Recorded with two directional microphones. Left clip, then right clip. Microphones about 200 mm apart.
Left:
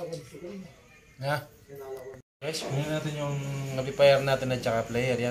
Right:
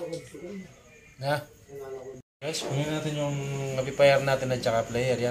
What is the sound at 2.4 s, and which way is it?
A man's voice, 5° left (ahead or behind).